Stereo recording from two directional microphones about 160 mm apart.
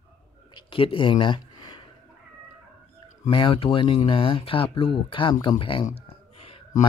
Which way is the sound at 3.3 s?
30° left (ahead or behind).